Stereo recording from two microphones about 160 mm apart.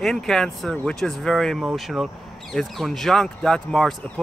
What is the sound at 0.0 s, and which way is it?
Speech, 5° left (ahead or behind).